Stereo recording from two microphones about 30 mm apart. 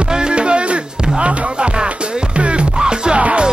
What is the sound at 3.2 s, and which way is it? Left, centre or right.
Music, right.